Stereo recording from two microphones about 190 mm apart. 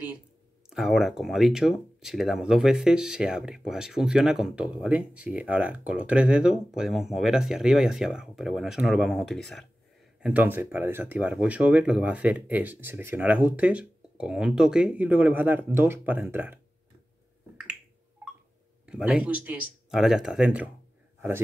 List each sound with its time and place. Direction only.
0.7 s speech: centre (ahead or behind)
10.2 s speech: 10° right (ahead or behind)
18.9 s speech: 5° right (ahead or behind)